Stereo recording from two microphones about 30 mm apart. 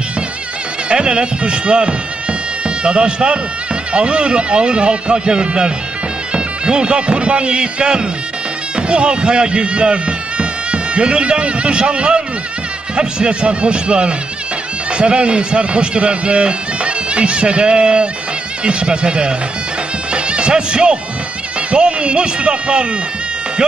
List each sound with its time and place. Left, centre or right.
0.8 s speech: right
20.1 s music: right
21.5 s speech: right